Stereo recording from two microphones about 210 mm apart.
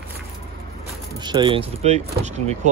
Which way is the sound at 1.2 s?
20° right (ahead or behind).